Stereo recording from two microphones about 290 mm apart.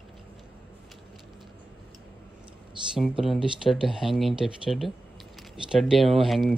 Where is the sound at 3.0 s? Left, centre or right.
Centre.